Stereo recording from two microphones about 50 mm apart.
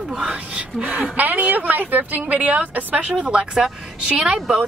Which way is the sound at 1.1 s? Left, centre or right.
Right.